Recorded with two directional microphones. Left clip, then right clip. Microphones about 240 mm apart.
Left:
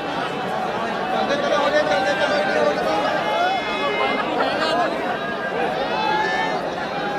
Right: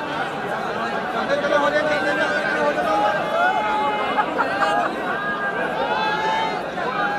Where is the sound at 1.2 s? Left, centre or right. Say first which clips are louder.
Right 2 dB; right.